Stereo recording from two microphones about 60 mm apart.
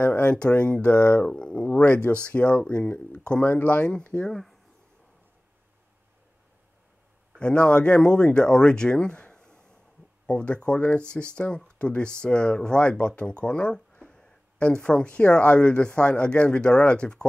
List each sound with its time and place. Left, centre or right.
0.0 s speech: left
1.3 s a sound: centre
1.7 s a sound: left
2.2 s speech: left
4.3 s speech: centre
7.3 s speech: centre